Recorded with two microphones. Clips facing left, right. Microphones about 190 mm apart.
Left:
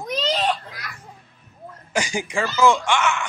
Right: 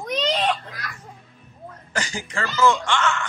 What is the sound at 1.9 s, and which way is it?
Speech, 15° left (ahead or behind).